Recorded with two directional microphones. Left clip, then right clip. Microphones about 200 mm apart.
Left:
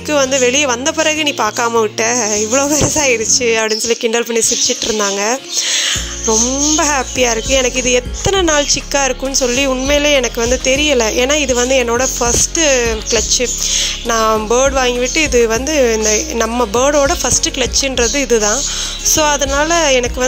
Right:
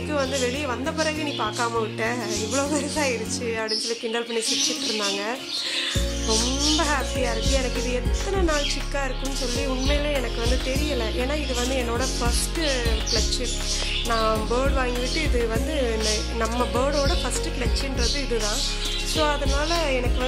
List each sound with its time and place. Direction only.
0.1 s speech: 40° left (ahead or behind)
6.8 s speech: 45° left (ahead or behind)